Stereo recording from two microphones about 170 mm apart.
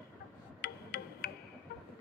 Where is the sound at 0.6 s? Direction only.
65° left (ahead or behind).